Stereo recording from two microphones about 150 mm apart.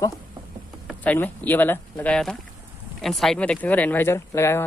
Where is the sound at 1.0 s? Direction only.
10° left (ahead or behind).